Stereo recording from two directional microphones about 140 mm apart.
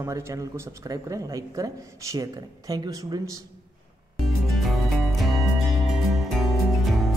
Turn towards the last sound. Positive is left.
turn(degrees=0)  # may be behind; listen again after turning